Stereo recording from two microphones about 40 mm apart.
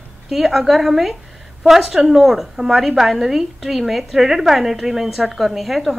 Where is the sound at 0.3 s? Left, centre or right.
Centre.